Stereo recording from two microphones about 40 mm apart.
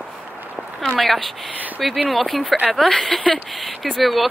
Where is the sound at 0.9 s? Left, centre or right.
Centre.